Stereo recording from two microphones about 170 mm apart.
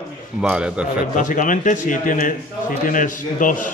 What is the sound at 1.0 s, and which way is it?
A man's voice, 50° left (ahead or behind).